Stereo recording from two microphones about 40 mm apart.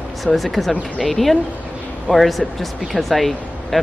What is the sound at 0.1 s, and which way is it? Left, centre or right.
Speech, centre.